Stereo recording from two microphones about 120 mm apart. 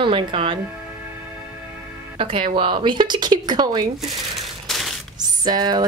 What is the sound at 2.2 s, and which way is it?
Speech, 50° right (ahead or behind).